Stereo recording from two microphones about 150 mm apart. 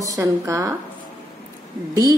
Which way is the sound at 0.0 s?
20° right (ahead or behind).